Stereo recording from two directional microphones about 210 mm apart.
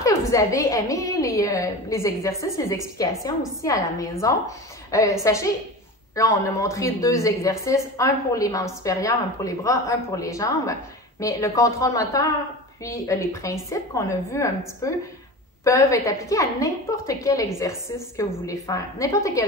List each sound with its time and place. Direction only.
0.3 s speech: 15° left (ahead or behind)